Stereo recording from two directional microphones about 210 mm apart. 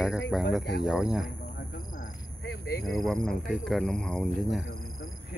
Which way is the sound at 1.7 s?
40° left (ahead or behind).